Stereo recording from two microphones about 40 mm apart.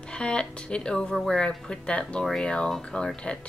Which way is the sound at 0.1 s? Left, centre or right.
Left.